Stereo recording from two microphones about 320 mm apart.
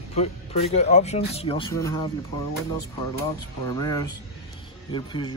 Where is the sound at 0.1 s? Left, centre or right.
Centre.